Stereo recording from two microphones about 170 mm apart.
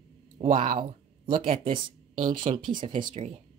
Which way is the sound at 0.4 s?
35° right (ahead or behind).